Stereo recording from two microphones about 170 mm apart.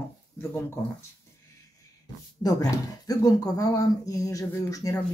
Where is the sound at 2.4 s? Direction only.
20° left (ahead or behind).